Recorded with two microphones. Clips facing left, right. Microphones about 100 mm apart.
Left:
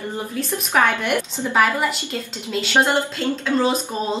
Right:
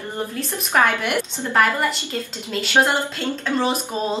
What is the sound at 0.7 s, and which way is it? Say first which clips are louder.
A woman's voice: even; centre (ahead or behind).